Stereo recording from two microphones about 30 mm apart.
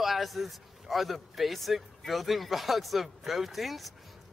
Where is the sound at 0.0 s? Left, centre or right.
Centre.